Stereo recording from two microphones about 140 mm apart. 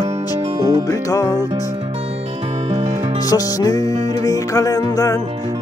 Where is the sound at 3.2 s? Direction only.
25° left (ahead or behind).